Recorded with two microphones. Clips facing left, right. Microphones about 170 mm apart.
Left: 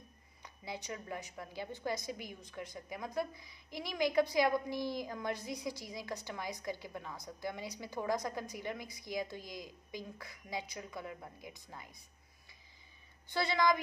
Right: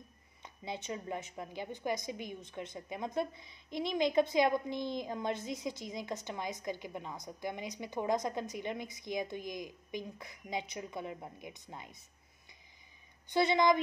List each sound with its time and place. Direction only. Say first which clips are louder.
0.4 s a woman's voice: right 3 dB; 20° right (ahead or behind)
13.3 s a woman's voice: right 4 dB; 20° right (ahead or behind)